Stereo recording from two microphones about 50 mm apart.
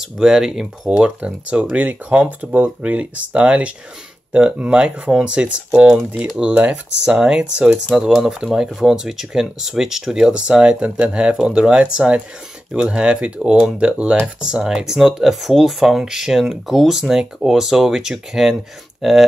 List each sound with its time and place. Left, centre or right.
0.0 s speech: centre
0.8 s speech: right
6.2 s speech: centre
6.5 s speech: right
7.1 s speech: centre
7.9 s speech: centre